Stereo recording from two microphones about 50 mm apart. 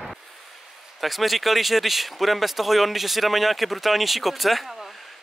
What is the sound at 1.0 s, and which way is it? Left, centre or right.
Speech, centre.